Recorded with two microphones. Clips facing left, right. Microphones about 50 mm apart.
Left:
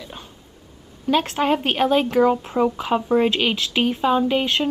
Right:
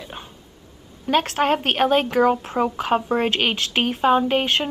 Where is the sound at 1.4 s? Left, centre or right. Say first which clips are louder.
Even; right.